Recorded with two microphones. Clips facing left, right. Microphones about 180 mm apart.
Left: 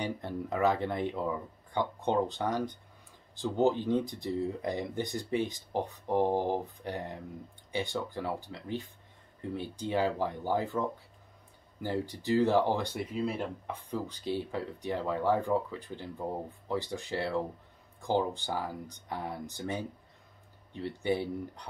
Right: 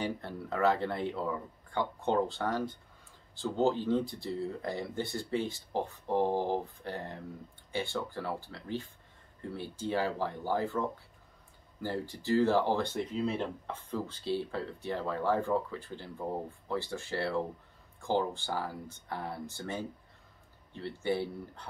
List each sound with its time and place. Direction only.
0.0 s speech: 15° left (ahead or behind)
11.8 s speech: 15° left (ahead or behind)